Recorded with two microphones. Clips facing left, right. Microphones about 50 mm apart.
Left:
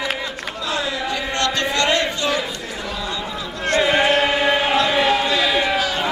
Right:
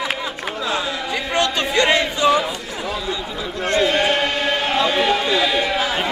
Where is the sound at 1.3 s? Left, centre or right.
Centre.